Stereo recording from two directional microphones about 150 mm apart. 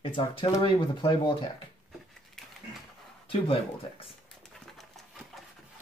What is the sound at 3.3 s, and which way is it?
Speech, 40° left (ahead or behind).